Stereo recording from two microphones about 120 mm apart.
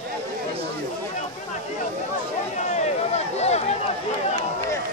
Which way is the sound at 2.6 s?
75° left (ahead or behind).